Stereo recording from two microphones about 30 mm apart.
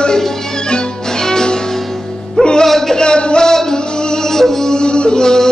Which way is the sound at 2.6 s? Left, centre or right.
Centre.